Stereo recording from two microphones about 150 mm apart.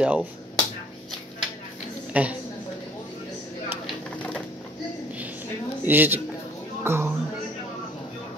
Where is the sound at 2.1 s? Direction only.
10° right (ahead or behind).